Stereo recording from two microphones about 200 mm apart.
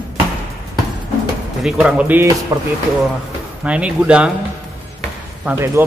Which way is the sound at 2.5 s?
15° right (ahead or behind).